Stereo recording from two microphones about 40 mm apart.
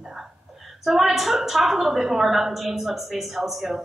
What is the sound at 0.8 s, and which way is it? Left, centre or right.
A woman's voice, centre.